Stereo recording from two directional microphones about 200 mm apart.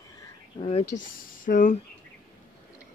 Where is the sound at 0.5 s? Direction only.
30° left (ahead or behind).